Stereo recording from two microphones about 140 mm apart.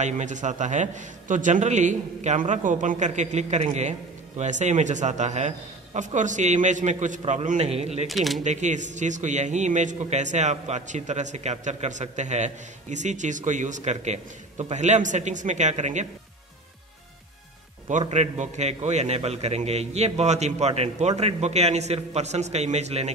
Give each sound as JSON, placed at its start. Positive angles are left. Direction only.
{"t": 0.0, "sound": "a man's voice", "side_deg": -60}
{"t": 8.1, "sound": "speech", "side_deg": 0}
{"t": 8.5, "sound": "a man's voice", "side_deg": -60}
{"t": 17.8, "sound": "a man's voice", "side_deg": -55}